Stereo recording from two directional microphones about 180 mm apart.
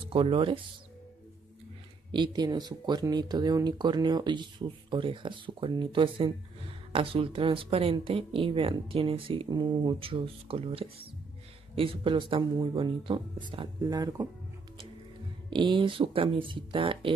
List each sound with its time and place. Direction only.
0.1 s speech: 30° right (ahead or behind)
2.1 s speech: 25° right (ahead or behind)
15.5 s speech: 25° right (ahead or behind)